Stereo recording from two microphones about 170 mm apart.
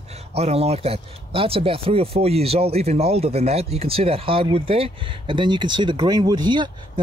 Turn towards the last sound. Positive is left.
turn(degrees=-25)  # may be behind; listen again after turning